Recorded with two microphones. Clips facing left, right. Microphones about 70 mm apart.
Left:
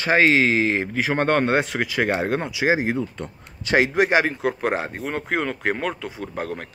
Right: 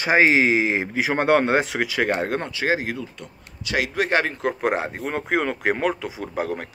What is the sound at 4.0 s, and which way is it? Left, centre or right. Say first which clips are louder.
Speech: left 3 dB; centre.